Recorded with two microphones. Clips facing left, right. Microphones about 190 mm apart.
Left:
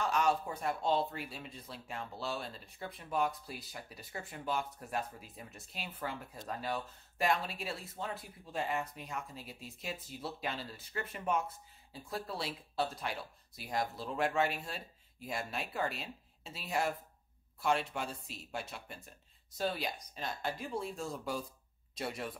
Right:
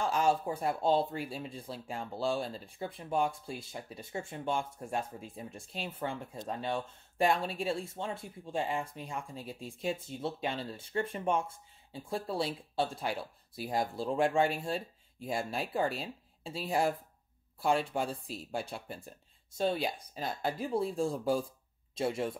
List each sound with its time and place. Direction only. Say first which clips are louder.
0.0 s speech: right 3 dB; 30° right (ahead or behind)